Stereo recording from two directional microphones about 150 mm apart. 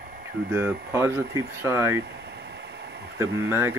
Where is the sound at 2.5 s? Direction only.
90° right.